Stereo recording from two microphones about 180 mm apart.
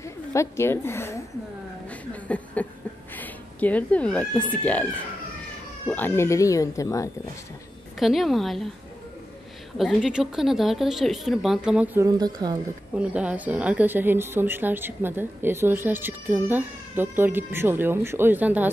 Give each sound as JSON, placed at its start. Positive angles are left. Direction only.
{"t": 0.0, "sound": "a sound", "side_deg": 15}
{"t": 3.2, "sound": "speech", "side_deg": 10}
{"t": 8.0, "sound": "speech", "side_deg": 0}
{"t": 9.8, "sound": "speech", "side_deg": 0}
{"t": 12.2, "sound": "speech", "side_deg": -20}
{"t": 12.9, "sound": "a woman's voice", "side_deg": -5}